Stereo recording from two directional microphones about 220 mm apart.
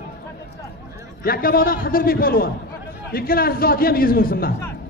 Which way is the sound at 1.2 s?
40° left (ahead or behind).